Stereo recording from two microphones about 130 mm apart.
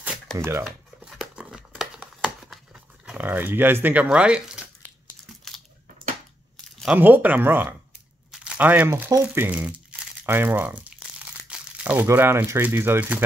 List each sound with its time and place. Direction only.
0.4 s speech: 20° right (ahead or behind)
0.7 s a sound: 5° right (ahead or behind)
3.1 s speech: 15° right (ahead or behind)
5.5 s a sound: 5° left (ahead or behind)
7.0 s speech: 15° right (ahead or behind)
8.3 s crumpling: 10° right (ahead or behind)
9.2 s speech: 15° right (ahead or behind)